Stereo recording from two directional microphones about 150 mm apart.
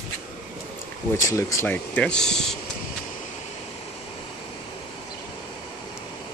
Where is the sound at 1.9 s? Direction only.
5° left (ahead or behind).